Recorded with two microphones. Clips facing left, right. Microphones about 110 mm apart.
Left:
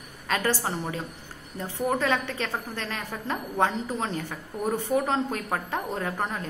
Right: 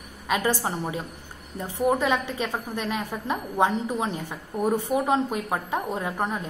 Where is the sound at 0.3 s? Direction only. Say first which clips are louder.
Right 2 dB; 15° right (ahead or behind).